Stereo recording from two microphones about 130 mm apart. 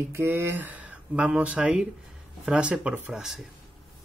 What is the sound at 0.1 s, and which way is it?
Speech, 20° right (ahead or behind).